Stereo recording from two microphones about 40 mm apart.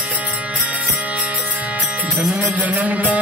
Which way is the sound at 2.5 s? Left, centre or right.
Right.